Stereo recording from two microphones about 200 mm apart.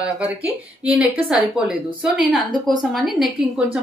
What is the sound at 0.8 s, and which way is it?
A woman's voice, 5° right (ahead or behind).